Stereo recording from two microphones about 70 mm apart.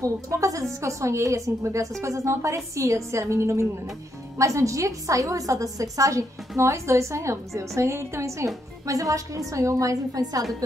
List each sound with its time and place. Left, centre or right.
0.0 s a woman's voice: right